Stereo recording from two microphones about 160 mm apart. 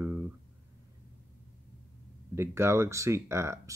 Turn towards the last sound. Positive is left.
turn(degrees=-15)  # may be behind; listen again after turning